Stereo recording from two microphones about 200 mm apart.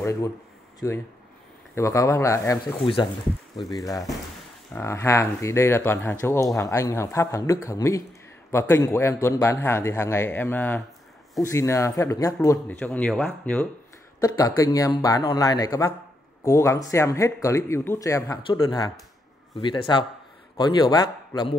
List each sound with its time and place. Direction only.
0.0 s a man's voice: 15° left (ahead or behind)
3.7 s a man's voice: 15° left (ahead or behind)
14.2 s a man's voice: 15° left (ahead or behind)